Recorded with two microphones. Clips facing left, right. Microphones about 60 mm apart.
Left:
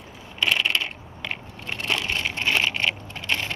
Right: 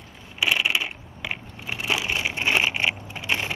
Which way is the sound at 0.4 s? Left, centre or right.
Centre.